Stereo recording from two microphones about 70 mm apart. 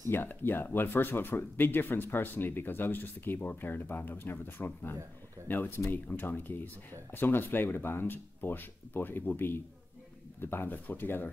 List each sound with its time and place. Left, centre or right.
0.1 s speech: left